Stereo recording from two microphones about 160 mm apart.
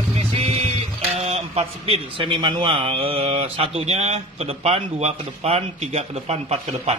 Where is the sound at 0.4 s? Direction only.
40° right (ahead or behind).